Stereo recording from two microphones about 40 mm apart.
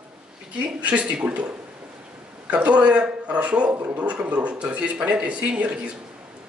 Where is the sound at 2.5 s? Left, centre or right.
Right.